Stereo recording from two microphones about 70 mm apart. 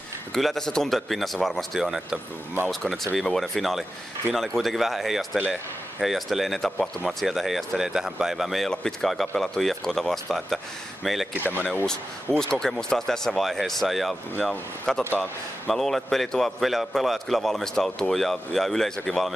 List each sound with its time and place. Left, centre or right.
0.3 s a man's voice: centre
11.3 s speech: right
11.8 s a man's voice: centre